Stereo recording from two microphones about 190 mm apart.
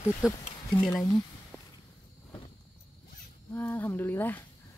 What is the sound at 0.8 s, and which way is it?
Speech, centre (ahead or behind).